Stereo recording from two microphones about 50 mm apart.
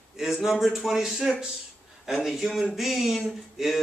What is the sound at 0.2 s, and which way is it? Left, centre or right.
A man's voice, centre.